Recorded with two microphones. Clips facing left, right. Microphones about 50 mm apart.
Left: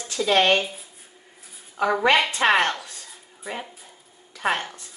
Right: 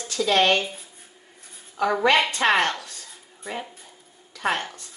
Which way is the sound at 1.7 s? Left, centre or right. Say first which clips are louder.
Even; centre.